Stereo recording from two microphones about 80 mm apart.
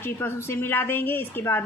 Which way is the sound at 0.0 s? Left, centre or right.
Left.